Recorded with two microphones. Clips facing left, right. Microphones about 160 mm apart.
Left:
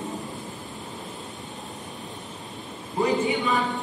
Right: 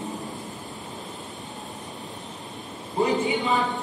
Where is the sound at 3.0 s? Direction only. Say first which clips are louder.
Even; 20° right (ahead or behind).